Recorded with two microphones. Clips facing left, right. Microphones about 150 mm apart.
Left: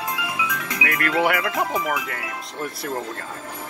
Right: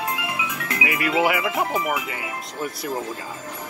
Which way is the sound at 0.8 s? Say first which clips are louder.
Even; 5° right (ahead or behind).